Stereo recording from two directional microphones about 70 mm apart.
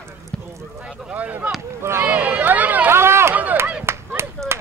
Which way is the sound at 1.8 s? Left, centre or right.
Right.